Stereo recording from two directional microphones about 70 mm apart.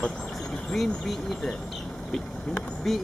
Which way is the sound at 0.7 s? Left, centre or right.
Centre.